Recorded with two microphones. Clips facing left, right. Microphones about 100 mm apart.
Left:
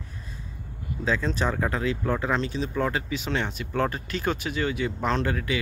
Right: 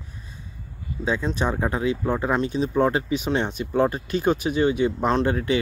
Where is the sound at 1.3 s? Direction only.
20° right (ahead or behind).